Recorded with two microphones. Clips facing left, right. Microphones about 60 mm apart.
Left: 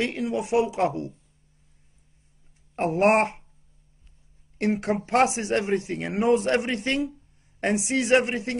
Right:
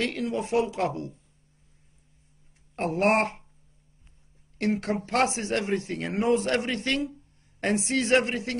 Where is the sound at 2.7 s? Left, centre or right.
Left.